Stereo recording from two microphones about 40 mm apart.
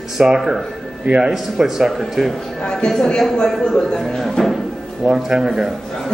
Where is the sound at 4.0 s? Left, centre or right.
Centre.